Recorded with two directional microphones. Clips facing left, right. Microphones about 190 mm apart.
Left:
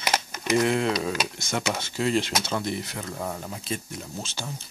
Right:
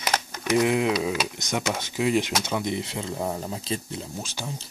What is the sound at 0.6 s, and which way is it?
Speech, 10° right (ahead or behind).